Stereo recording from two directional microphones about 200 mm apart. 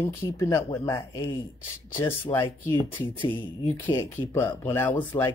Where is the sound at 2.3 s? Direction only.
15° left (ahead or behind).